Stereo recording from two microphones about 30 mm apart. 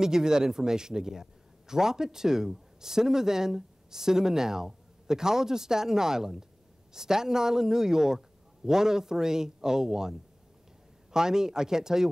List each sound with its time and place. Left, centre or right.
0.0 s a man's voice: right